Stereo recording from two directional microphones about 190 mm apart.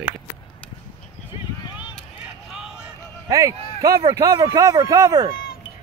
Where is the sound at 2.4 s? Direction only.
5° right (ahead or behind).